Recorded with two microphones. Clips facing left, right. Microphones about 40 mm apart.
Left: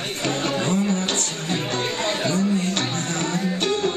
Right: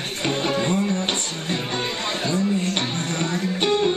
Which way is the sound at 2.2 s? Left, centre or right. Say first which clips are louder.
Right 1 dB; right.